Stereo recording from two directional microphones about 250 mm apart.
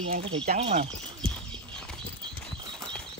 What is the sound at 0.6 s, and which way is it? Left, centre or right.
Speech, right.